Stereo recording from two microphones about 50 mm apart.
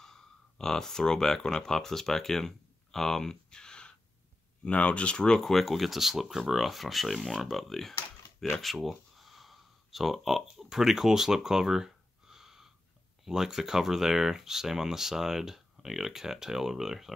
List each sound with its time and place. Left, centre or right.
0.0 s speech: centre
5.4 s speech: centre
8.7 s a sound: centre
13.2 s speech: centre